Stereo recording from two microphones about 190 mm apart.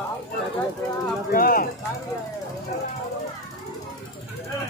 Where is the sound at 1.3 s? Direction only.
50° left (ahead or behind).